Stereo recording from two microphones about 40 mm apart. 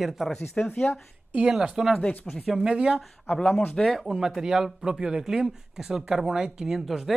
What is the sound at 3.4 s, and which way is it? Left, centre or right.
Speech, centre.